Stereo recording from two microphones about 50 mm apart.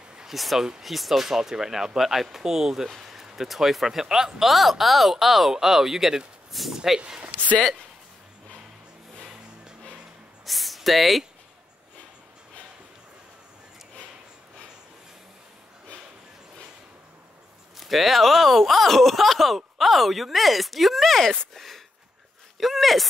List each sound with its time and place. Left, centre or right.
0.3 s speech: centre
7.0 s speech: right
10.4 s a sound: centre
17.7 s speech: centre